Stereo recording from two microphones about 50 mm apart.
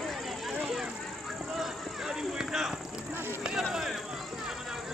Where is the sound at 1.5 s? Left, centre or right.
Centre.